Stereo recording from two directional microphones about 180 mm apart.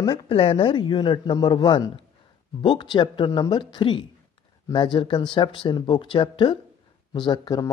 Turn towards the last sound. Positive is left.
turn(degrees=20)  # may be behind; listen again after turning